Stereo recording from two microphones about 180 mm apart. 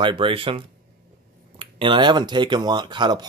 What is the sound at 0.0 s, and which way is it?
Speech, 30° right (ahead or behind).